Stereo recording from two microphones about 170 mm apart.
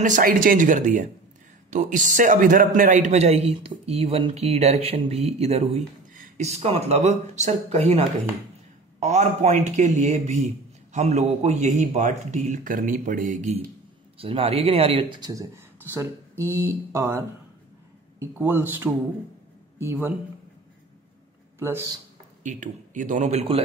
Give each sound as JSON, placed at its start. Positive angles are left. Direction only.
{"t": 0.0, "sound": "a man's voice", "side_deg": -50}
{"t": 6.1, "sound": "a man's voice", "side_deg": -50}
{"t": 9.0, "sound": "a man's voice", "side_deg": -40}
{"t": 14.1, "sound": "speech", "side_deg": -35}
{"t": 18.2, "sound": "speech", "side_deg": -10}
{"t": 21.5, "sound": "speech", "side_deg": -15}
{"t": 22.4, "sound": "a man's voice", "side_deg": -45}